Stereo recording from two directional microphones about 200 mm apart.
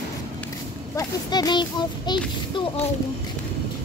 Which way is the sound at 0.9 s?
20° left (ahead or behind).